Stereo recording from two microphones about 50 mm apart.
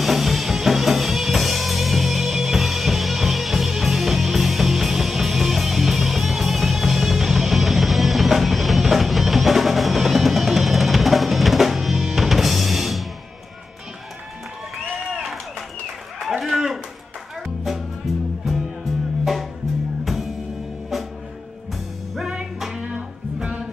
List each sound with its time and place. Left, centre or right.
0.0 s music: centre
16.2 s a sound: centre
22.3 s music: centre
22.8 s music: right